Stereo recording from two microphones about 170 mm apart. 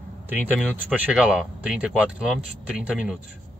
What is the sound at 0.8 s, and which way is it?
Speech, 5° right (ahead or behind).